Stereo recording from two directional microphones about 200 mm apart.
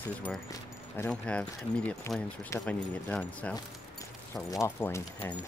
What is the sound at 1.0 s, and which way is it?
Speech, 5° left (ahead or behind).